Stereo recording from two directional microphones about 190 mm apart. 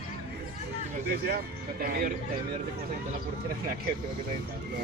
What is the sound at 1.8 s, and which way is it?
Speech, 50° right (ahead or behind).